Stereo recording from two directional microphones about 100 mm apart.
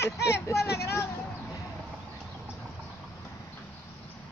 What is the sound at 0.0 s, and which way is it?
Speech, 30° left (ahead or behind).